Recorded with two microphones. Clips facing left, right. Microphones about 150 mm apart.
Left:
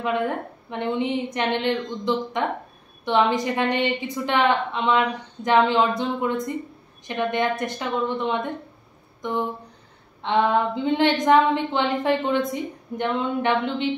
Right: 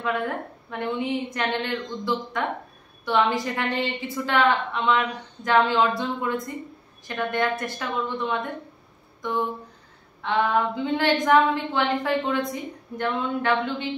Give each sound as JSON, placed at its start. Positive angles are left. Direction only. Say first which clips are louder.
{"t": 0.0, "sound": "a woman's voice", "louder": "left 3 dB", "side_deg": 20}
{"t": 10.2, "sound": "a woman's voice", "louder": "left 2 dB", "side_deg": 20}